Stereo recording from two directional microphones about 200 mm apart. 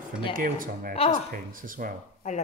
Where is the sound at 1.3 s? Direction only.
45° right (ahead or behind).